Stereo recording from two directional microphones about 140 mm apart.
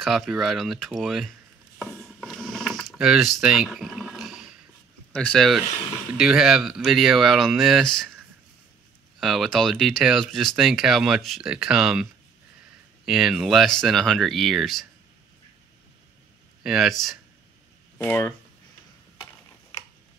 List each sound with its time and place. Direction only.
0.0 s speech: centre (ahead or behind)
1.8 s a sound: centre (ahead or behind)
5.1 s speech: 5° left (ahead or behind)
9.2 s speech: centre (ahead or behind)
16.6 s speech: 5° right (ahead or behind)
17.9 s speech: 15° left (ahead or behind)